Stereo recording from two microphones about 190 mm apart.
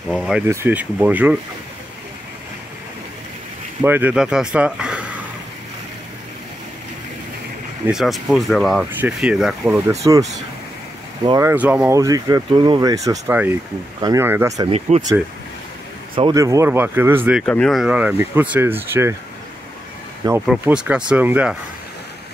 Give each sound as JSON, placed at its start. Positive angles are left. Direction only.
{"t": 0.1, "sound": "speech", "side_deg": 0}
{"t": 3.8, "sound": "speech", "side_deg": -10}
{"t": 7.8, "sound": "speech", "side_deg": 0}
{"t": 10.0, "sound": "speech", "side_deg": -20}
{"t": 11.2, "sound": "speech", "side_deg": -15}
{"t": 14.9, "sound": "speech", "side_deg": -40}
{"t": 16.3, "sound": "speech", "side_deg": -15}
{"t": 17.4, "sound": "speech", "side_deg": 5}
{"t": 20.4, "sound": "speech", "side_deg": -5}